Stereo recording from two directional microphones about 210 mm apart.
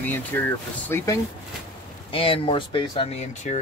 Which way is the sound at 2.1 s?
25° left (ahead or behind).